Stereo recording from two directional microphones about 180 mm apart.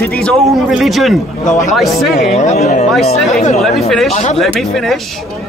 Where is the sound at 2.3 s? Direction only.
40° left (ahead or behind).